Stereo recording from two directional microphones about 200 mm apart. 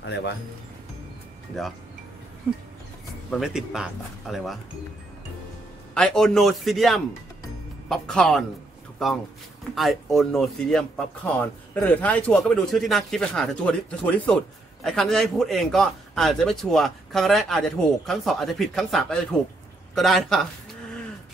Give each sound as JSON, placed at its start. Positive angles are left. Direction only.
{"t": 0.0, "sound": "speech", "side_deg": 60}
{"t": 3.3, "sound": "speech", "side_deg": 0}
{"t": 5.9, "sound": "speech", "side_deg": 5}
{"t": 9.8, "sound": "speech", "side_deg": 0}